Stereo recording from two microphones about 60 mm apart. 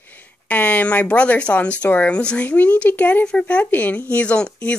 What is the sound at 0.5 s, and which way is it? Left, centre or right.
Speech, left.